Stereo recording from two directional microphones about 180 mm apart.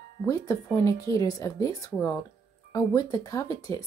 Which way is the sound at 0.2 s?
15° left (ahead or behind).